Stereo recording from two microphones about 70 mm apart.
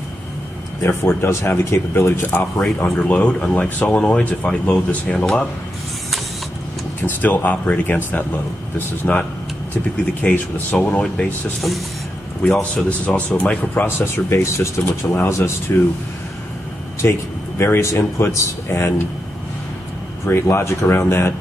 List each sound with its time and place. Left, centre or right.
0.7 s speech: left
2.8 s speech: left
7.0 s speech: left
10.2 s speech: left
12.4 s speech: centre; by 15.5 s left
17.0 s speech: left
20.2 s speech: left